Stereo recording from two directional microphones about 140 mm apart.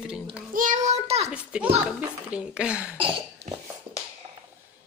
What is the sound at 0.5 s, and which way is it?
Speech, 70° right (ahead or behind).